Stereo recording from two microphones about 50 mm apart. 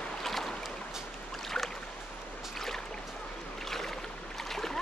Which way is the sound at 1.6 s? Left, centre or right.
Centre.